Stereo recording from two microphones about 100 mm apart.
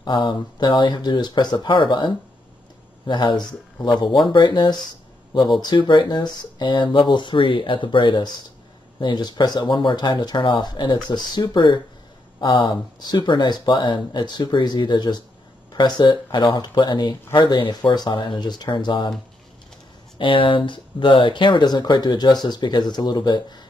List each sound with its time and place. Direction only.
0.0 s speech: 50° left (ahead or behind)
20.2 s speech: 60° left (ahead or behind)